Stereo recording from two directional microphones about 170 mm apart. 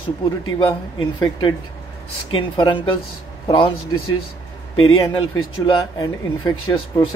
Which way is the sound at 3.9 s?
20° left (ahead or behind).